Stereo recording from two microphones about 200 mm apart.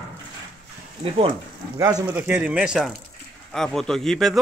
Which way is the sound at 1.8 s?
15° right (ahead or behind).